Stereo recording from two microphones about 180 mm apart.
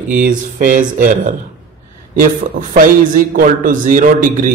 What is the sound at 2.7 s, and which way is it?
A man's voice, 50° right (ahead or behind).